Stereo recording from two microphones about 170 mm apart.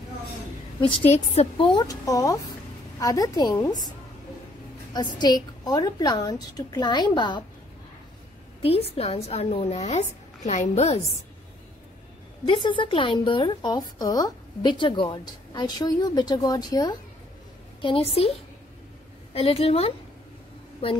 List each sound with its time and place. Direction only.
1.3 s speech: 40° left (ahead or behind)
1.7 s a woman's voice: 20° left (ahead or behind)
4.9 s a woman's voice: 25° left (ahead or behind)
8.6 s speech: 35° left (ahead or behind)
12.4 s a woman's voice: 30° left (ahead or behind)
17.8 s speech: 35° left (ahead or behind)
19.3 s speech: 35° left (ahead or behind)